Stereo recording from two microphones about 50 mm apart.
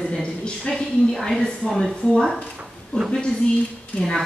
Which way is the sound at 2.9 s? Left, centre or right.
Centre.